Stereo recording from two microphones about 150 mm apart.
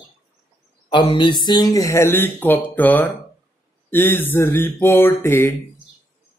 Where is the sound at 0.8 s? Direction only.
30° left (ahead or behind).